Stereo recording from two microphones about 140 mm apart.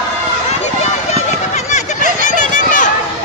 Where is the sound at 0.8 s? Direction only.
55° left (ahead or behind).